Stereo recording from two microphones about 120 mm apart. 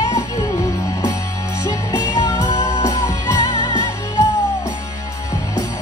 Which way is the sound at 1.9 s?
35° left (ahead or behind).